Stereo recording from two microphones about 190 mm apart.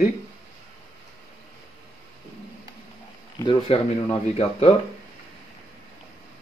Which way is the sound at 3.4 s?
25° left (ahead or behind).